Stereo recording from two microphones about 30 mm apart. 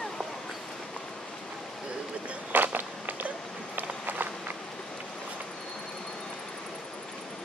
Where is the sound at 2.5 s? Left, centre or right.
Right.